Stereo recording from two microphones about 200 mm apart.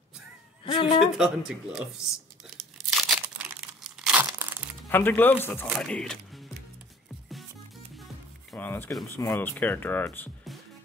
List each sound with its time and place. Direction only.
0.7 s speech: 25° left (ahead or behind)
1.1 s speech: 5° right (ahead or behind)
3.0 s crumpling: 5° right (ahead or behind)
4.8 s speech: 10° left (ahead or behind)
8.5 s speech: 10° left (ahead or behind)